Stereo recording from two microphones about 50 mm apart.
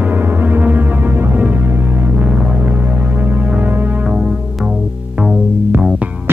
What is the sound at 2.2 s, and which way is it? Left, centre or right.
Music, right.